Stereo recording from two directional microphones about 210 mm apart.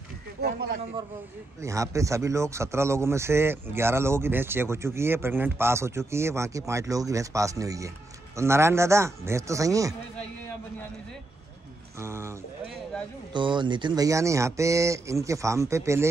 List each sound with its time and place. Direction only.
0.4 s speech: 50° right (ahead or behind)
1.6 s speech: 15° right (ahead or behind)
12.0 s speech: 15° right (ahead or behind)